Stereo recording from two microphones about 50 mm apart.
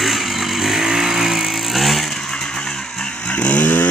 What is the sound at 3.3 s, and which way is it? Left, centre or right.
Chainsaw, left.